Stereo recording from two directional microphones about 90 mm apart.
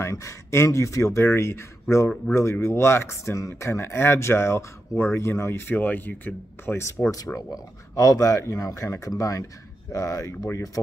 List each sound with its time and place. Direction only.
0.0 s speech: 35° left (ahead or behind)
7.3 s speech: 15° left (ahead or behind)
7.9 s speech: 45° left (ahead or behind)